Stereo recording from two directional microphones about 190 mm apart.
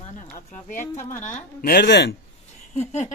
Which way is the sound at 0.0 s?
45° left (ahead or behind).